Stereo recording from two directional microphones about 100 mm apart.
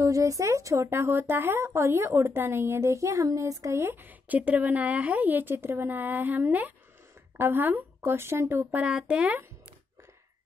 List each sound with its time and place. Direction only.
0.0 s speech: 35° right (ahead or behind)
8.8 s speech: 10° right (ahead or behind)